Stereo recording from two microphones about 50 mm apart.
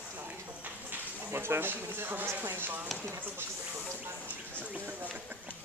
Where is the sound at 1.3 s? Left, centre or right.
Right.